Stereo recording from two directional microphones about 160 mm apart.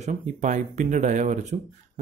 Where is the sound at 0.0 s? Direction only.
50° right (ahead or behind).